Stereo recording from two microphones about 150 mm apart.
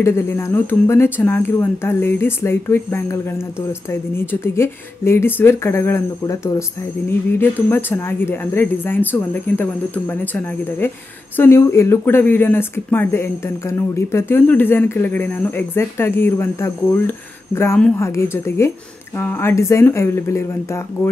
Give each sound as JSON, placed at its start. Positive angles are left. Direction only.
{"t": 0.0, "sound": "speech", "side_deg": 15}